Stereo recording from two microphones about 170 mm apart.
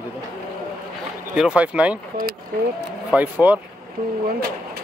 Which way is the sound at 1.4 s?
5° right (ahead or behind).